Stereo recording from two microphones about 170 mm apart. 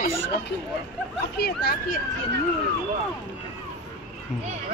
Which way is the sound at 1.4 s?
65° left (ahead or behind).